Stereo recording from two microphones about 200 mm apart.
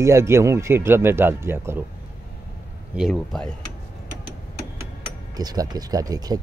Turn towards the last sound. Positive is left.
turn(degrees=-20)  # may be behind; listen again after turning